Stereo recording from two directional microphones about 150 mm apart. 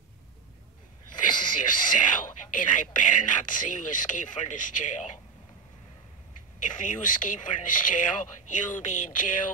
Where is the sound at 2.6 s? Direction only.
60° left (ahead or behind).